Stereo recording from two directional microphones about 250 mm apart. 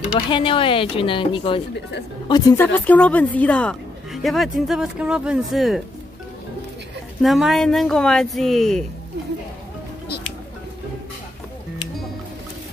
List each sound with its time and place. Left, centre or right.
0.3 s a woman's voice: left; by 5.8 s centre
7.2 s speech: centre